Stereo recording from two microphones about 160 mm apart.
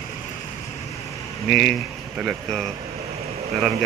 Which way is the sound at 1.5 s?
5° left (ahead or behind).